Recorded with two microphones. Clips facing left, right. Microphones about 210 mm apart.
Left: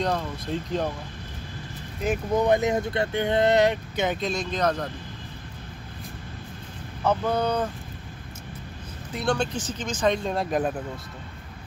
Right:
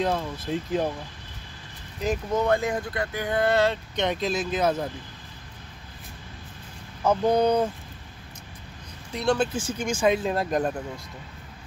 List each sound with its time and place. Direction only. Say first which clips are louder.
0.0 s speech: right 1 dB; 5° right (ahead or behind)
2.0 s speech: left 2 dB; 15° left (ahead or behind)
3.9 s speech: even; 5° left (ahead or behind)
7.0 s speech: right 3 dB; 10° right (ahead or behind)
9.1 s speech: right 2 dB; centre (ahead or behind)